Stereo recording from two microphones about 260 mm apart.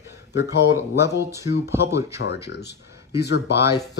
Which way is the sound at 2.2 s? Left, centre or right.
Left.